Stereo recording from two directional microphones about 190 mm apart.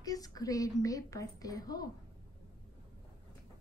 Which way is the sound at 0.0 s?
20° left (ahead or behind).